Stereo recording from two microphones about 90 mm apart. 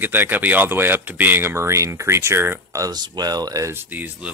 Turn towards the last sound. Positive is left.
turn(degrees=-15)  # may be behind; listen again after turning